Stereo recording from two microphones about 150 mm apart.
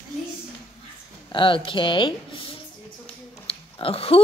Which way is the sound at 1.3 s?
35° left (ahead or behind).